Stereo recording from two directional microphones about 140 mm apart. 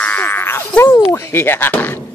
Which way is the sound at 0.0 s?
15° left (ahead or behind).